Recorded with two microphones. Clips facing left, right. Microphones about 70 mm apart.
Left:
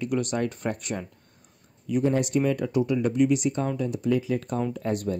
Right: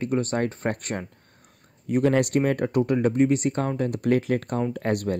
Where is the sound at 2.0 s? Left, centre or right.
Right.